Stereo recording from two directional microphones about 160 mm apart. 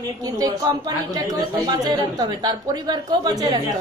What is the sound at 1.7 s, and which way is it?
A woman's voice, 25° right (ahead or behind).